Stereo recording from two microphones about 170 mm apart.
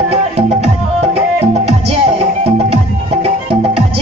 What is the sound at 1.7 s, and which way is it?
Music, 35° right (ahead or behind).